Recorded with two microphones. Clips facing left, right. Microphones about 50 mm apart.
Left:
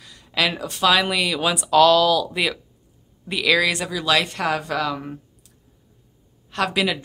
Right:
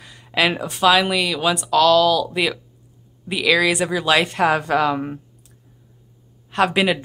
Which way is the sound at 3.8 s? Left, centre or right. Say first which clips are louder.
Right 3 dB; centre.